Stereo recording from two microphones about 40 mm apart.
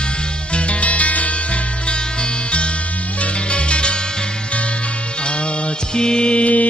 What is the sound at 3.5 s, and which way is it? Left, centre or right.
Music, left.